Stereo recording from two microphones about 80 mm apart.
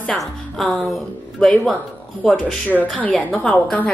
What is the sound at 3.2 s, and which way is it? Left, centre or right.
Speech, centre.